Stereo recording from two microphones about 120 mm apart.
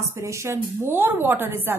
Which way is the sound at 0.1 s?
25° right (ahead or behind).